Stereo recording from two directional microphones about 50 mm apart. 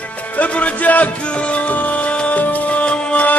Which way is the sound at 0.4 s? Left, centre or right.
Left.